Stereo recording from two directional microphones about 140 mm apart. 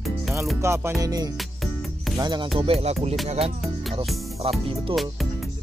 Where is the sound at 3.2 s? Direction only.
45° right (ahead or behind).